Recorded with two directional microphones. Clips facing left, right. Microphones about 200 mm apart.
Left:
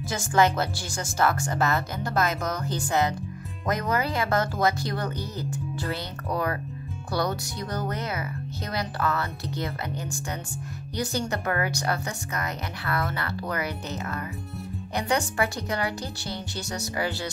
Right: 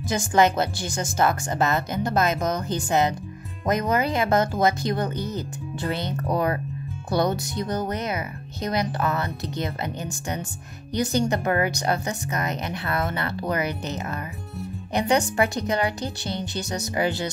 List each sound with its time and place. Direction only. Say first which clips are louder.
0.1 s speech: right 3 dB; 20° right (ahead or behind)